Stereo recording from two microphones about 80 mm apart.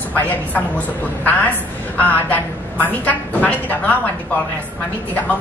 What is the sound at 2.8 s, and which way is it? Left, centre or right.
A woman's voice, centre.